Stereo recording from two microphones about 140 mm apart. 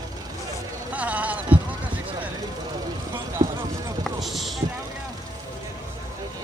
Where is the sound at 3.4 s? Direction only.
25° right (ahead or behind).